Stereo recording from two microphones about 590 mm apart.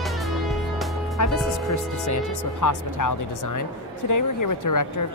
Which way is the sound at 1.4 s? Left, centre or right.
Left.